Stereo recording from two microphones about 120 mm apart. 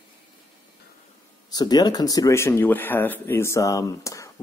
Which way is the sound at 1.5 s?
35° left (ahead or behind).